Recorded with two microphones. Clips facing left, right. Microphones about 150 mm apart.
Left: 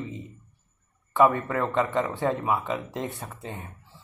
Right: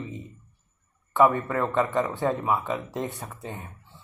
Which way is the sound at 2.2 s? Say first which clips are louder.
Even; 25° right (ahead or behind).